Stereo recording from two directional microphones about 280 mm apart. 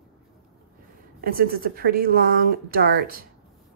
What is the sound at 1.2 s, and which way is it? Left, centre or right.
Speech, right.